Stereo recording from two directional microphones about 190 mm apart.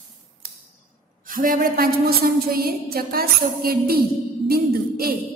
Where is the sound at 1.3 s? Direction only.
45° right (ahead or behind).